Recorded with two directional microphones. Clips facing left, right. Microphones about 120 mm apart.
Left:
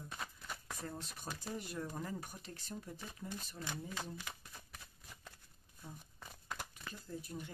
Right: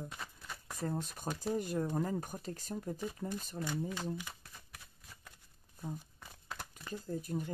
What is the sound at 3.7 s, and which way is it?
Speech, 10° right (ahead or behind).